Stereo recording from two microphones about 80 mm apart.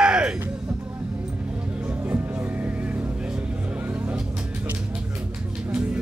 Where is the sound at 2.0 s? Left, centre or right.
Right.